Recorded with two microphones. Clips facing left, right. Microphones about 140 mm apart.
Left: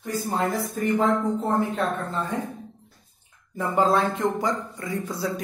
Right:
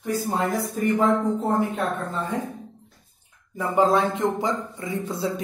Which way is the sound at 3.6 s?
15° right (ahead or behind).